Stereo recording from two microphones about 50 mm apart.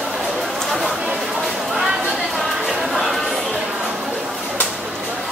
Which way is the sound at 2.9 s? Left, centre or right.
Centre.